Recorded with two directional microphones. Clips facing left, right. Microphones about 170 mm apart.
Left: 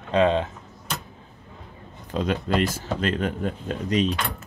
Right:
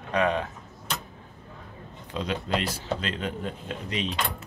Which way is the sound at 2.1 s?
50° left (ahead or behind).